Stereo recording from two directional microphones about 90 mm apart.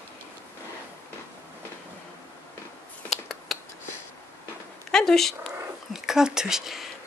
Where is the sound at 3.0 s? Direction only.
Centre (ahead or behind).